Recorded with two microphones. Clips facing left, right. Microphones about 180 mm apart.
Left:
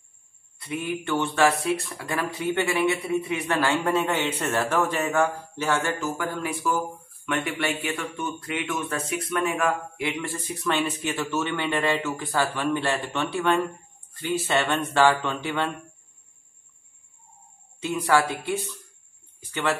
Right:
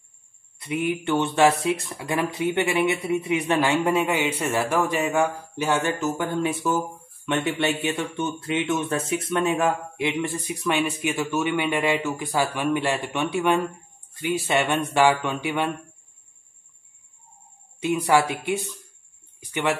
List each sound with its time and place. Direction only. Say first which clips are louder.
0.6 s speech: right 4 dB; 20° right (ahead or behind)
17.8 s speech: right 2 dB; 15° right (ahead or behind)